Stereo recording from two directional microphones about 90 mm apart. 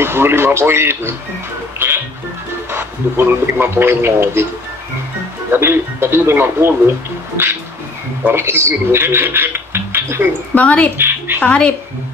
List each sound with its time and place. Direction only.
0.0 s speech: 25° right (ahead or behind)
1.8 s music: 20° right (ahead or behind)
2.7 s speech: 25° right (ahead or behind)
5.5 s speech: 25° right (ahead or behind)
8.2 s speech: 25° right (ahead or behind)
10.5 s a woman's voice: 15° left (ahead or behind)
11.0 s speech: 25° right (ahead or behind)
11.4 s a woman's voice: 15° left (ahead or behind)